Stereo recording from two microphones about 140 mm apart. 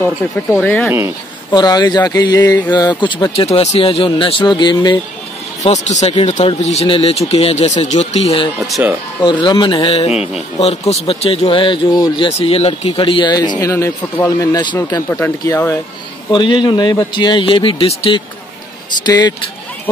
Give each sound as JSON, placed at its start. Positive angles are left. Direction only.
{"t": 0.2, "sound": "speech", "side_deg": 15}
{"t": 1.5, "sound": "a man's voice", "side_deg": 30}
{"t": 3.5, "sound": "a man's voice", "side_deg": 45}
{"t": 5.6, "sound": "speech", "side_deg": 55}
{"t": 9.2, "sound": "a man's voice", "side_deg": 30}
{"t": 12.3, "sound": "a man's voice", "side_deg": 45}
{"t": 16.3, "sound": "a man's voice", "side_deg": 35}
{"t": 18.9, "sound": "a man's voice", "side_deg": 30}